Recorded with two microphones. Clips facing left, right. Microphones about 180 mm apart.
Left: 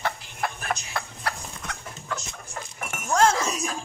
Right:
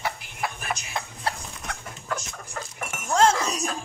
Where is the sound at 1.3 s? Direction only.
25° right (ahead or behind).